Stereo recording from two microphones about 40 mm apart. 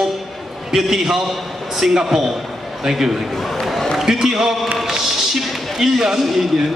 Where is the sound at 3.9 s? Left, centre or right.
Centre.